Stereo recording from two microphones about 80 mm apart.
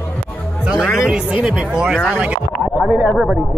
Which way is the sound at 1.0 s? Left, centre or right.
Centre.